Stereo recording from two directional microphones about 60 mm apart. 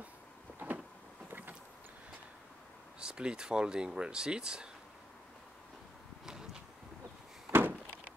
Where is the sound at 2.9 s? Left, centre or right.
Centre.